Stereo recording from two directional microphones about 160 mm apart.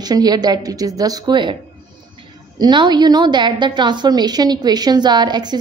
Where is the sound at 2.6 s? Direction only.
25° right (ahead or behind).